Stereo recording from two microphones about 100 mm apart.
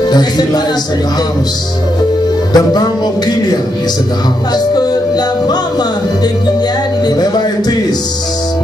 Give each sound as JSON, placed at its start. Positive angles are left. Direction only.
{"t": 2.5, "sound": "music", "side_deg": 45}